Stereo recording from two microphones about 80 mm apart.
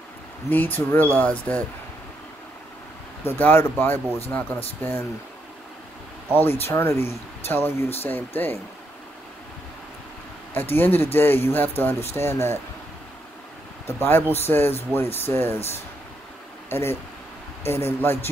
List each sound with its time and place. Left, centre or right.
0.5 s speech: left
3.3 s speech: left
6.3 s speech: left
10.5 s speech: left
13.8 s speech: left